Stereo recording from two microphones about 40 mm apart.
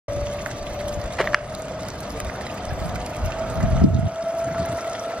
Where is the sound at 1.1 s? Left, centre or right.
Centre.